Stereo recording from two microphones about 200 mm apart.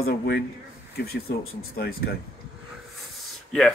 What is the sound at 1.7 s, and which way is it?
Speech, 50° left (ahead or behind).